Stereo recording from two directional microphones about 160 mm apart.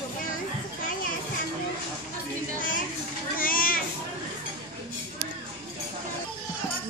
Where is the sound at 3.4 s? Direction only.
60° left (ahead or behind).